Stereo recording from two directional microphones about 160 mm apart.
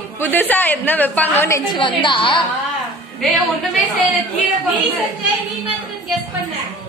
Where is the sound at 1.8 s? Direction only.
30° left (ahead or behind).